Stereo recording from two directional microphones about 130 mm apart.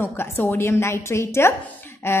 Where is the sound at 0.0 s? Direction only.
15° left (ahead or behind).